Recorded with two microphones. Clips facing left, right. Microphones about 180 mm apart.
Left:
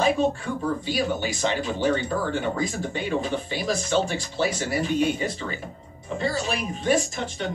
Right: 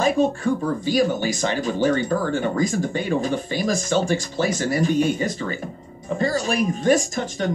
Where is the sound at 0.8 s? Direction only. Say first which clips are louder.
Right 6 dB; 45° right (ahead or behind).